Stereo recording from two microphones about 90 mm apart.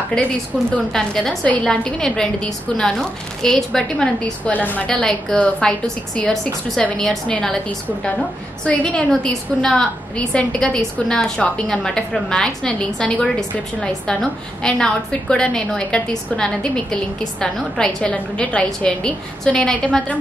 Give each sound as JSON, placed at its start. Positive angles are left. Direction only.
{"t": 0.9, "sound": "a woman's voice", "side_deg": 5}
{"t": 4.6, "sound": "a woman's voice", "side_deg": 20}
{"t": 4.8, "sound": "a woman's voice", "side_deg": 10}
{"t": 8.6, "sound": "a woman's voice", "side_deg": 10}